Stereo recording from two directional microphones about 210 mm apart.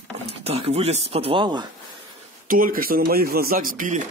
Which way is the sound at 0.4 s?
30° right (ahead or behind).